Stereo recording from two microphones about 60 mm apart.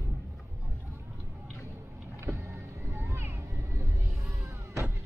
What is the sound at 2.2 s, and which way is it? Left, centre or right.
Vehicle, right.